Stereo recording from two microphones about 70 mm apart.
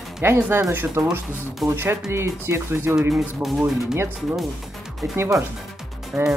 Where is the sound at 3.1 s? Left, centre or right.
Centre.